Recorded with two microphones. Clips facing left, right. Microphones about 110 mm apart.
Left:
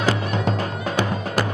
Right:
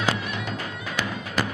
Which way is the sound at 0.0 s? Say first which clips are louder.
Left 5 dB; 35° left (ahead or behind).